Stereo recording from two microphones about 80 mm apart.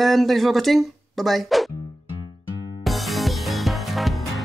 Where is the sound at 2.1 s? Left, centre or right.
Left.